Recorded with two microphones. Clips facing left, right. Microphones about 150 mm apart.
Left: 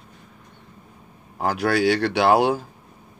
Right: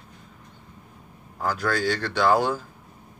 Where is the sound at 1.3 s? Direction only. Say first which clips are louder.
Left 5 dB; 70° left (ahead or behind).